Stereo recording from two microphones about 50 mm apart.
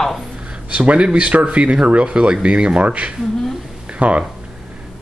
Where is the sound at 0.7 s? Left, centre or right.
Right.